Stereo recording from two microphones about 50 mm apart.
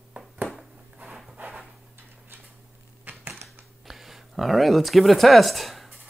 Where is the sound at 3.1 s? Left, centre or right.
Right.